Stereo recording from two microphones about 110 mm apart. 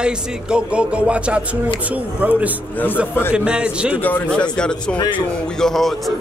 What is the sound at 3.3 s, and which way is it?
Speech, 10° right (ahead or behind).